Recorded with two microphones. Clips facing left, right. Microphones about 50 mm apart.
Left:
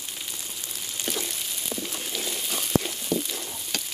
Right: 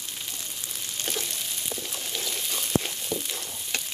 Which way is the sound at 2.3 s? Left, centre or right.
Left.